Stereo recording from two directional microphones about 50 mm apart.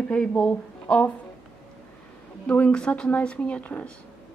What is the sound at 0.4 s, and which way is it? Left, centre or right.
Speech, left.